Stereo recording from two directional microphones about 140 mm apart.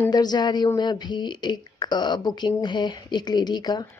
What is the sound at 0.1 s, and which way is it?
Speech, 30° left (ahead or behind).